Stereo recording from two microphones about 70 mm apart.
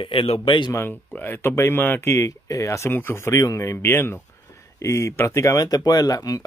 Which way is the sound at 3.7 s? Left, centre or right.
Left.